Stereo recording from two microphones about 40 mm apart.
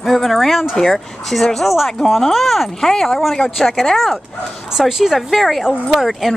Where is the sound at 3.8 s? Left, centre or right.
Centre.